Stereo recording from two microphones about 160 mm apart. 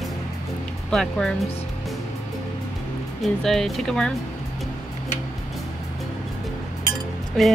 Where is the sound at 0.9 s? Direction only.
5° left (ahead or behind).